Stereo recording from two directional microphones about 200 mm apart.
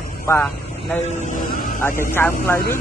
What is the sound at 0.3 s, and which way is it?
Speech, 15° left (ahead or behind).